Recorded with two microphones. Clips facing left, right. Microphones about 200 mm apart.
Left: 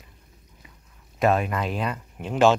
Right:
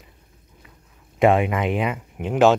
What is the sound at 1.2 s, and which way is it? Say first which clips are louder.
Speech: right 5 dB; 25° right (ahead or behind).